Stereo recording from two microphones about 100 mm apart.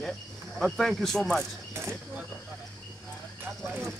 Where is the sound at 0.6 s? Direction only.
5° left (ahead or behind).